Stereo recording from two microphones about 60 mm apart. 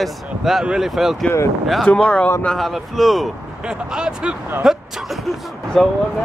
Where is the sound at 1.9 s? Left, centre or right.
Centre.